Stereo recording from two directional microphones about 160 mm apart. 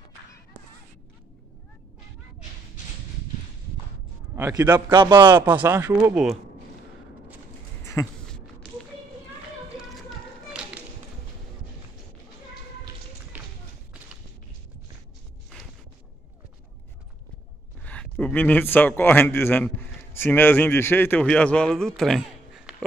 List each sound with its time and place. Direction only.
4.4 s a man's voice: 20° right (ahead or behind)
5.2 s speech: 15° right (ahead or behind)
7.8 s a sound: 15° left (ahead or behind)
9.8 s whip: 5° right (ahead or behind)
13.3 s run: 10° right (ahead or behind)
17.8 s a man's voice: 5° left (ahead or behind)